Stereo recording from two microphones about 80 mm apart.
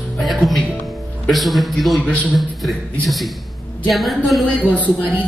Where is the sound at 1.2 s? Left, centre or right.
Centre.